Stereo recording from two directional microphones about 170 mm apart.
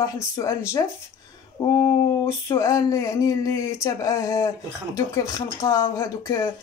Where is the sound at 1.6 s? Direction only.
20° left (ahead or behind).